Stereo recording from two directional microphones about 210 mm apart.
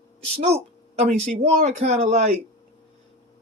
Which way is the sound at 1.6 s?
35° right (ahead or behind).